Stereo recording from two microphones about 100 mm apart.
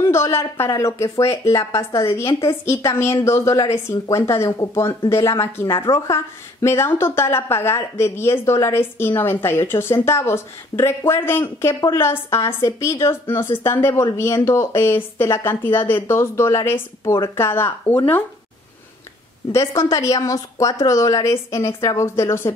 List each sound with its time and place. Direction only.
0.1 s a woman's voice: 30° left (ahead or behind)
19.5 s a woman's voice: 30° left (ahead or behind)